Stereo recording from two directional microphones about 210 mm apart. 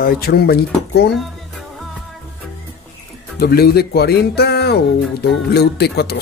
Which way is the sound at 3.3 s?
45° left (ahead or behind).